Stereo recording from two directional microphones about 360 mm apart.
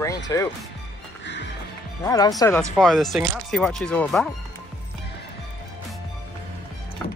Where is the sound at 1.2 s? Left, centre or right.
Left.